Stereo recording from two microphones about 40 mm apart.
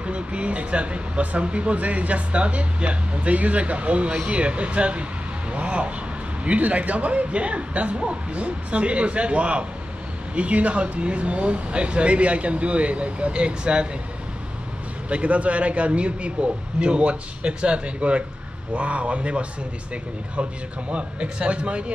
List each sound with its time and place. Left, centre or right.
0.0 s speech: right
15.0 s speech: right
20.9 s speech: right